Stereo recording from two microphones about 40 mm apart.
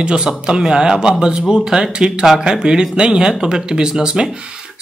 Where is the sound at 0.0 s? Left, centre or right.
Right.